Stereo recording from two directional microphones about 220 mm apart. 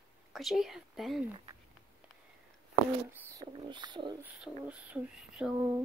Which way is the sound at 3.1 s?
15° right (ahead or behind).